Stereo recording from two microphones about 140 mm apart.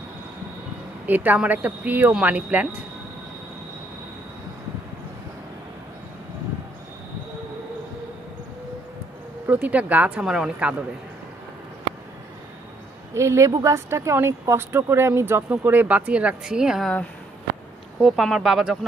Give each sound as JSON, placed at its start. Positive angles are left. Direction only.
{"t": 1.0, "sound": "speech", "side_deg": -10}
{"t": 9.5, "sound": "speech", "side_deg": -10}
{"t": 13.1, "sound": "speech", "side_deg": -20}
{"t": 18.0, "sound": "speech", "side_deg": 0}